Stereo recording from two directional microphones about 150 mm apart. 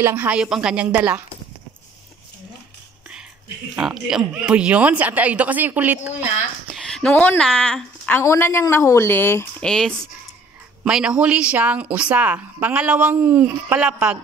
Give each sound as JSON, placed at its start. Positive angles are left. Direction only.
{"t": 0.0, "sound": "a woman's voice", "side_deg": -15}
{"t": 3.7, "sound": "a woman's voice", "side_deg": -5}
{"t": 6.7, "sound": "speech", "side_deg": 5}
{"t": 8.2, "sound": "a woman's voice", "side_deg": 15}
{"t": 9.7, "sound": "a woman's voice", "side_deg": 5}